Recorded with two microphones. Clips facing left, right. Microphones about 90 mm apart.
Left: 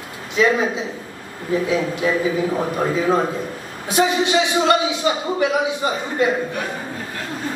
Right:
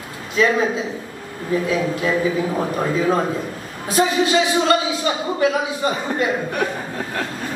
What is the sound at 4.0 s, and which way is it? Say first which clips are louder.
A woman's voice: even; 20° left (ahead or behind).